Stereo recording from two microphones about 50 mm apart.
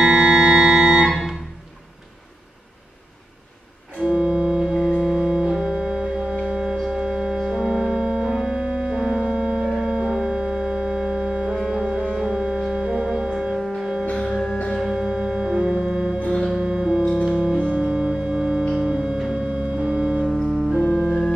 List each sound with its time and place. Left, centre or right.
0.0 s music: centre
4.0 s music: centre
6.4 s organ: centre
9.7 s music: centre
20.2 s music: centre